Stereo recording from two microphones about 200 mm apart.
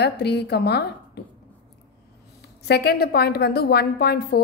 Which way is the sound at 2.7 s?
55° left (ahead or behind).